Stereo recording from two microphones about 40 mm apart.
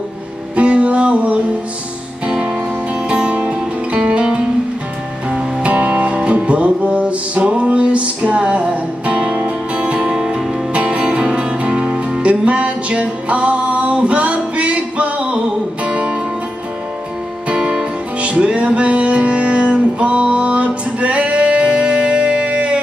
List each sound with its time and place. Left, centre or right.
0.6 s music: right
5.7 s music: right; by 10.4 s centre
10.7 s music: right
17.5 s music: right